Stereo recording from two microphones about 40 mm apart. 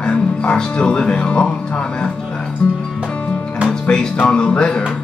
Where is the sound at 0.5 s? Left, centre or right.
Left.